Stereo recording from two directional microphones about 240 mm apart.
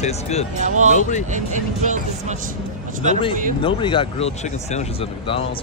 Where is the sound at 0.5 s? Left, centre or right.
Right.